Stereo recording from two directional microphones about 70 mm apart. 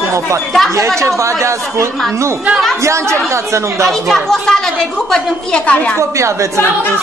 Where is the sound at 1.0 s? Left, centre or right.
Right.